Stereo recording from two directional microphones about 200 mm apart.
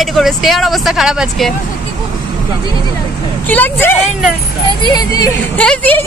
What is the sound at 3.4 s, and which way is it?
A woman's voice, 10° left (ahead or behind).